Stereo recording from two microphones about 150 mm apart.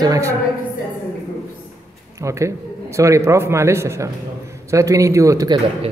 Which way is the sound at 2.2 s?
20° right (ahead or behind).